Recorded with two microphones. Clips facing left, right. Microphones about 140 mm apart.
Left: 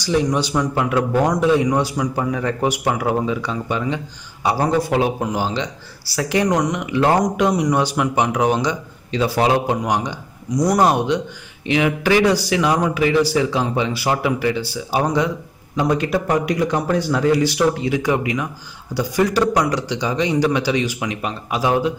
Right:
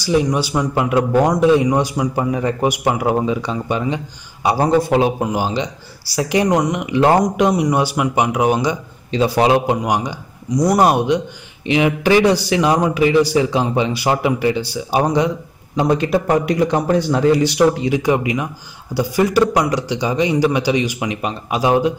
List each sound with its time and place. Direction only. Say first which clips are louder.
0.0 s a man's voice: right 2 dB; 10° right (ahead or behind)
0.6 s a man's voice: right 3 dB; 20° right (ahead or behind)
9.1 s a man's voice: right 3 dB; 20° right (ahead or behind)